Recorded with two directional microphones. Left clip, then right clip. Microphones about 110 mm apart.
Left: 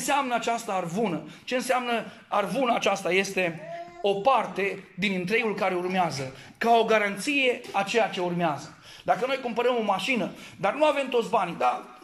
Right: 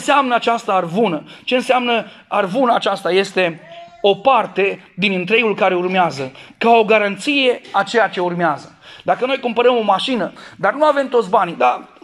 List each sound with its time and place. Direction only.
0.0 s a man's voice: centre (ahead or behind)
2.4 s a man's voice: 5° left (ahead or behind)
3.0 s a man's voice: 15° left (ahead or behind)
4.0 s a man's voice: 10° right (ahead or behind)
7.7 s speech: 20° left (ahead or behind)
8.3 s a man's voice: centre (ahead or behind)
10.6 s a man's voice: 15° left (ahead or behind)
11.4 s a man's voice: 10° right (ahead or behind)